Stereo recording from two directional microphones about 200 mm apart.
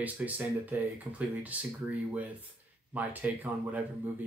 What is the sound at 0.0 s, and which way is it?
Speech, 10° right (ahead or behind).